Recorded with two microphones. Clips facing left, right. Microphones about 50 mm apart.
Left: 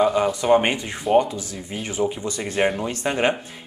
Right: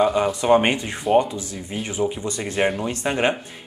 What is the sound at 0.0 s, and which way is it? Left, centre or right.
Speech, centre.